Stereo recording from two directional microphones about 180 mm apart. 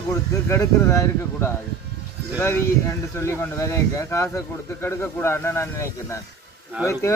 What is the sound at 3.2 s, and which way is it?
Speech, 15° left (ahead or behind).